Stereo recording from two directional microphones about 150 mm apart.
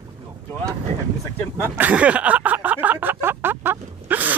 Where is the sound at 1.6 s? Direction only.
15° right (ahead or behind).